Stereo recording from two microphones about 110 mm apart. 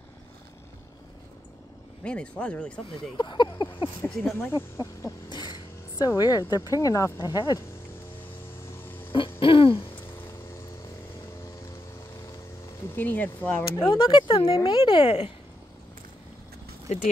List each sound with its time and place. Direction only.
2.0 s speech: 10° left (ahead or behind)
3.2 s speech: 45° left (ahead or behind)
4.4 s speech: 25° left (ahead or behind)
5.3 s speech: 45° left (ahead or behind)
8.8 s a sound: 20° left (ahead or behind)
9.4 s hoot: 55° left (ahead or behind)
12.9 s speech: 15° left (ahead or behind)
13.9 s speech: 50° left (ahead or behind)
16.9 s speech: 90° left